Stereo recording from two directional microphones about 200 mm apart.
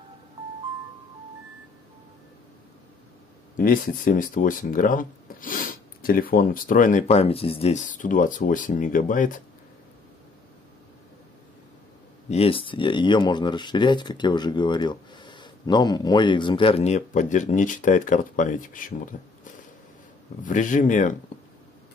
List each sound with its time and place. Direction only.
3.5 s speech: 40° left (ahead or behind)
12.3 s speech: 30° left (ahead or behind)
20.4 s speech: 40° left (ahead or behind)